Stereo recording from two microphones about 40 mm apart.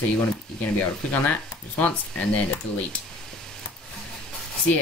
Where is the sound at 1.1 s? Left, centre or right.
Left.